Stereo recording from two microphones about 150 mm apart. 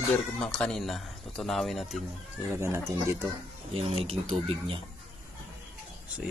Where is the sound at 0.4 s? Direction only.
5° left (ahead or behind).